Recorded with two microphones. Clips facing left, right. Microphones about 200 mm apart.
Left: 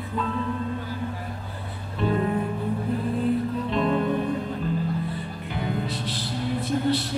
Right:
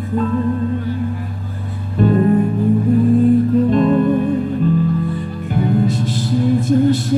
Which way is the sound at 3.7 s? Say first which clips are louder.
Right 10 dB; 45° right (ahead or behind).